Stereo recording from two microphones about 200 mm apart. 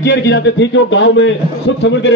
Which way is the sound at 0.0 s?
65° left (ahead or behind).